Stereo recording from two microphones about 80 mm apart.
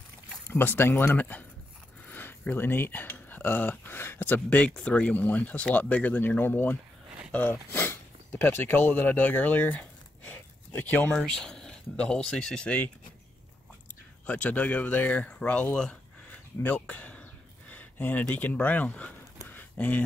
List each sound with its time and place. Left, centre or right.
0.5 s speech: left
11.1 s speech: centre
14.2 s speech: centre
17.6 s a sound: left
18.3 s speech: centre
19.4 s a sound: left